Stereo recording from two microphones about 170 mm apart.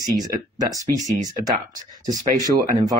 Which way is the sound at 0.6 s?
20° right (ahead or behind).